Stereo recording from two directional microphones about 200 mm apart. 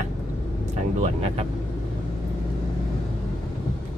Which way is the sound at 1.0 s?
30° right (ahead or behind).